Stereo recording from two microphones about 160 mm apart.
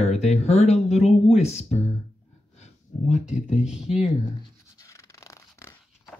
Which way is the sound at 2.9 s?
45° left (ahead or behind).